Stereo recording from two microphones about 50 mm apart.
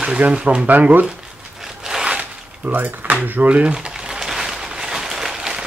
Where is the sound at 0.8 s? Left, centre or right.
Right.